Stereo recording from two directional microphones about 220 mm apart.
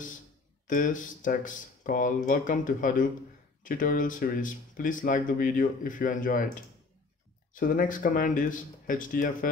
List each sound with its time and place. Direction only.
0.7 s speech: 35° left (ahead or behind)